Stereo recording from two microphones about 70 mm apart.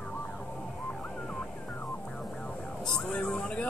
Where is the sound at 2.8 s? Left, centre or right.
Centre.